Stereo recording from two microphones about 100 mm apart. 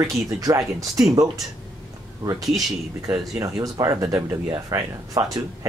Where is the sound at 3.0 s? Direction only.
35° right (ahead or behind).